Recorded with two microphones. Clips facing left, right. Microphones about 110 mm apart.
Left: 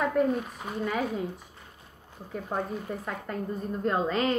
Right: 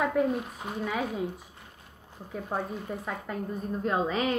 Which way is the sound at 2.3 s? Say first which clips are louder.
Left 1 dB; 5° right (ahead or behind).